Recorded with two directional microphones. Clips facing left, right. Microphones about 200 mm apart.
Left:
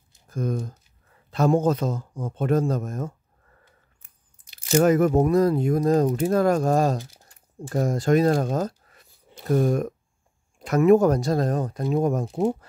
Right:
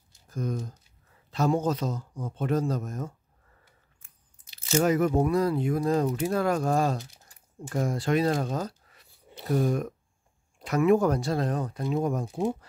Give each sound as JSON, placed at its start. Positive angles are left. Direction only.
{"t": 0.3, "sound": "speech", "side_deg": 50}
{"t": 4.6, "sound": "speech", "side_deg": 50}